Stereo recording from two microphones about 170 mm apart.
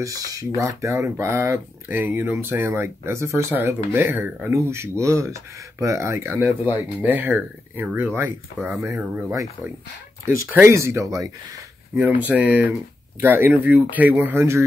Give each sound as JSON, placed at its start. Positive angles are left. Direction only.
{"t": 0.0, "sound": "speech", "side_deg": -20}
{"t": 8.7, "sound": "speech", "side_deg": 0}
{"t": 10.2, "sound": "speech", "side_deg": -15}